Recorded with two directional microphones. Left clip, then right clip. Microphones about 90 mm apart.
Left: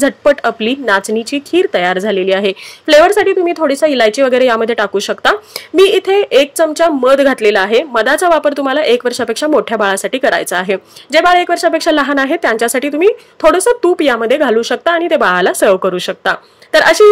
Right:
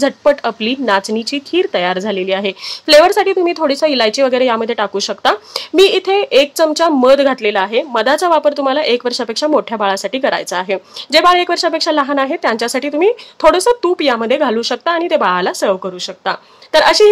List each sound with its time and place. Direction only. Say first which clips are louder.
0.0 s speech: left 2 dB; 30° left (ahead or behind)